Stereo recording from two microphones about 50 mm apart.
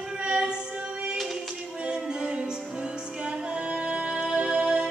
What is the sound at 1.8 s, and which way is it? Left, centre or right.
Music, centre.